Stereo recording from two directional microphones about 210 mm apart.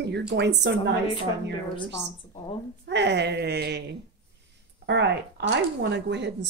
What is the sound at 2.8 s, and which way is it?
A woman's voice, 55° right (ahead or behind).